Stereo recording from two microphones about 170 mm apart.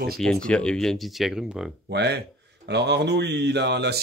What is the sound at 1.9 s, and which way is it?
Speech, 75° right (ahead or behind).